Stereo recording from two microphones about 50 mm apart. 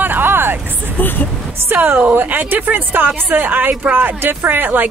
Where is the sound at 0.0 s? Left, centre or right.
Right.